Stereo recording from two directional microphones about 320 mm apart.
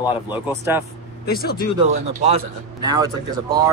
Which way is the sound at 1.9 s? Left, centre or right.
Right.